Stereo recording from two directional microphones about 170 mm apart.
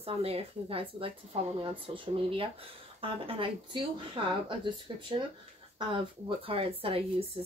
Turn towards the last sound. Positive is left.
turn(degrees=-35)  # may be behind; listen again after turning